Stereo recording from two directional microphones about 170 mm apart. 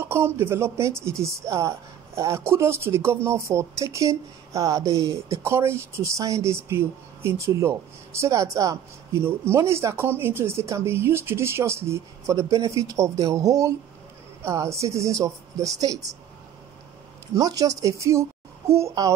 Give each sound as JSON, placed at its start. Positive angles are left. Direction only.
{"t": 0.0, "sound": "speech", "side_deg": -15}
{"t": 17.3, "sound": "speech", "side_deg": -20}